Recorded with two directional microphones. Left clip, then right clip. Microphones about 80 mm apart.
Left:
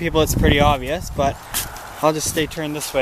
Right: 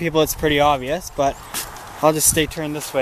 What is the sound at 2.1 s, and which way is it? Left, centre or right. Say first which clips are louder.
Speech: right 2 dB; right.